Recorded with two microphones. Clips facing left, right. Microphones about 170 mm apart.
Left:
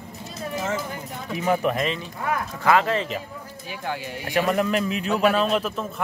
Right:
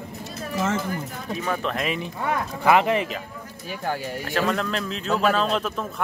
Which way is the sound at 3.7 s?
45° right (ahead or behind).